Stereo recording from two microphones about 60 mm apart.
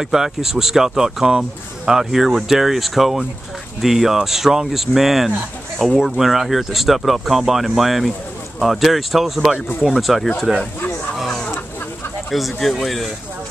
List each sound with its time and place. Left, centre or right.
0.0 s speech: centre
11.1 s a sound: centre
12.3 s speech: centre